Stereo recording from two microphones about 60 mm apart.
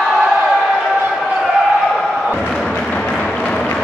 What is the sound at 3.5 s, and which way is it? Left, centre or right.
Applause, left.